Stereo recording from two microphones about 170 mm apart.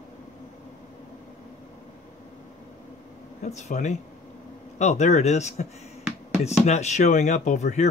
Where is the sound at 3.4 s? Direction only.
45° left (ahead or behind).